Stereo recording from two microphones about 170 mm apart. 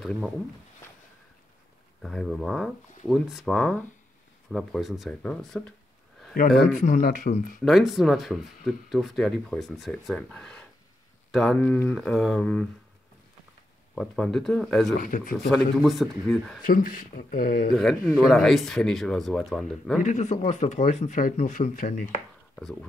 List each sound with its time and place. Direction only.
0.0 s speech: centre (ahead or behind)
2.0 s speech: centre (ahead or behind)
6.7 s speech: 45° left (ahead or behind)
7.6 s speech: centre (ahead or behind)
13.9 s speech: centre (ahead or behind)
15.0 s speech: 55° left (ahead or behind)
15.3 s speech: centre (ahead or behind)
16.6 s speech: 55° left (ahead or behind)
17.7 s speech: 5° left (ahead or behind)
20.0 s speech: 45° left (ahead or behind)
22.6 s speech: 5° left (ahead or behind)